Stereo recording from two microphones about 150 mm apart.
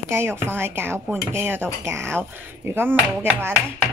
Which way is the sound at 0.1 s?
15° right (ahead or behind).